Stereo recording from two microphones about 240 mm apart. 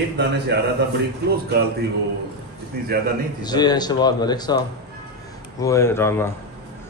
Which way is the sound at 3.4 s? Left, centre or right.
Centre.